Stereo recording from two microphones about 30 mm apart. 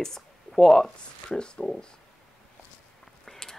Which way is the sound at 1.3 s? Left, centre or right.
Left.